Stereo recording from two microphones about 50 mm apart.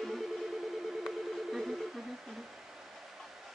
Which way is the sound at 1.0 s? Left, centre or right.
Centre.